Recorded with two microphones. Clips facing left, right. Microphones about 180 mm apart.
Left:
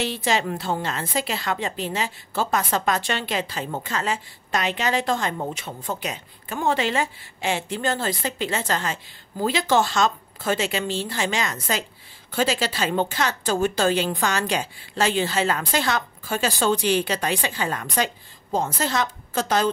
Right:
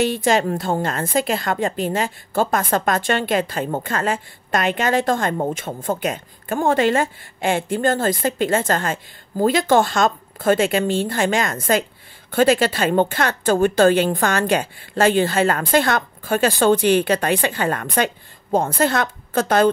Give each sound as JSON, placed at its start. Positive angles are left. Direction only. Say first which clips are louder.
{"t": 0.0, "sound": "a woman's voice", "louder": "right 6 dB", "side_deg": -50}